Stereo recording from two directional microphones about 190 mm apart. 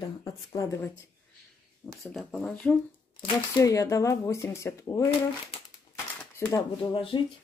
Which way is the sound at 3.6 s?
15° left (ahead or behind).